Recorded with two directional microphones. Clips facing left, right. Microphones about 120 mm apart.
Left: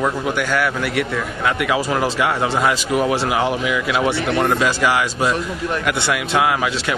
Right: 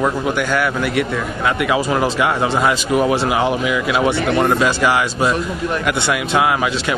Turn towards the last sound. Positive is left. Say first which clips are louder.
# right 2 dB
turn(degrees=-25)  # may be behind; listen again after turning